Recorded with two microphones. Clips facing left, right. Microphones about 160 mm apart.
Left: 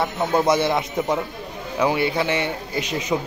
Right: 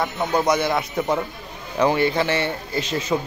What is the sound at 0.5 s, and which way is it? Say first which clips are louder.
Speech: left 1 dB; 25° left (ahead or behind).